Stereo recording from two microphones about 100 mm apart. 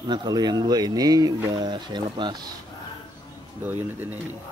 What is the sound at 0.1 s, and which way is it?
Speech, 45° right (ahead or behind).